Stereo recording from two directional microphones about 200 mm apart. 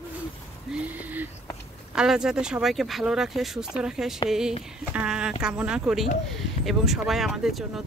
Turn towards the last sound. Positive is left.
turn(degrees=0)  # may be behind; listen again after turning